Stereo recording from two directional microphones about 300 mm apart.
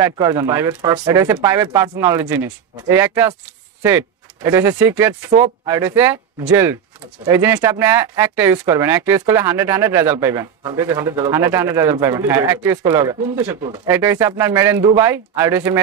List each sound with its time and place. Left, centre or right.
0.0 s speech: centre